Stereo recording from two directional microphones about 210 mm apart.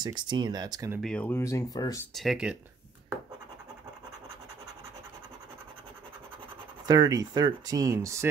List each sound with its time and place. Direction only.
0.0 s speech: 20° right (ahead or behind)
1.0 s speech: 5° left (ahead or behind)
2.1 s speech: 5° right (ahead or behind)
6.9 s speech: 20° right (ahead or behind)